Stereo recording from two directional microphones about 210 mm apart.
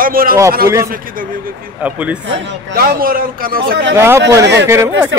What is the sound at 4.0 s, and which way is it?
Speech, 10° right (ahead or behind).